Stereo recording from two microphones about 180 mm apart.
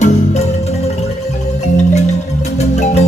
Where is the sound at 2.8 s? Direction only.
40° left (ahead or behind).